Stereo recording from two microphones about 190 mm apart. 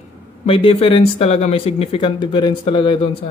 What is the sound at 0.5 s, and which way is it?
Speech, 30° left (ahead or behind).